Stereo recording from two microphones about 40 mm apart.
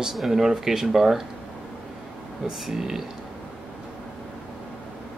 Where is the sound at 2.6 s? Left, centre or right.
Centre.